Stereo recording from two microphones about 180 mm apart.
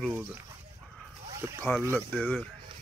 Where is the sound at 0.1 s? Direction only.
10° right (ahead or behind).